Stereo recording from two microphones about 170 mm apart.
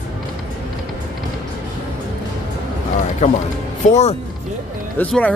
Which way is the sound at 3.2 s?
40° left (ahead or behind).